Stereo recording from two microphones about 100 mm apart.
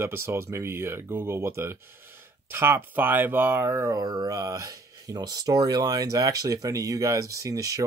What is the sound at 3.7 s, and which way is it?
Speech, 35° right (ahead or behind).